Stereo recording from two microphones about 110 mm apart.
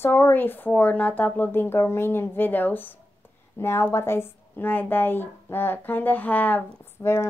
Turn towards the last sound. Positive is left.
turn(degrees=20)  # may be behind; listen again after turning